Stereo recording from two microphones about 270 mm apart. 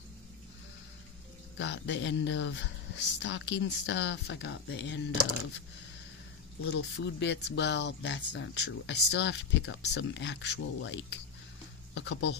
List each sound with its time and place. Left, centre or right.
1.6 s speech: left
6.6 s speech: left